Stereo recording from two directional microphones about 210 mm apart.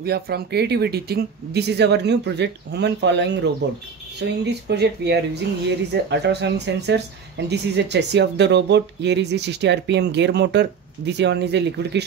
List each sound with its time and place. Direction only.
0.0 s speech: 50° right (ahead or behind)